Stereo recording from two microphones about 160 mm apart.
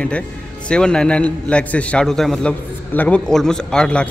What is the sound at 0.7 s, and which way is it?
A man's voice, 5° left (ahead or behind).